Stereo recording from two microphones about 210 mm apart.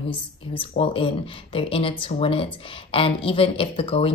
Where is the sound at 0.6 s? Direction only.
25° left (ahead or behind).